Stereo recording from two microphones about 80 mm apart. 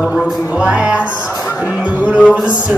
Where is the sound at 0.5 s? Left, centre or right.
Centre.